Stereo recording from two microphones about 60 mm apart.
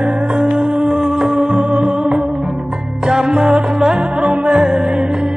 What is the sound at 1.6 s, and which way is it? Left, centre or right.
Music, centre.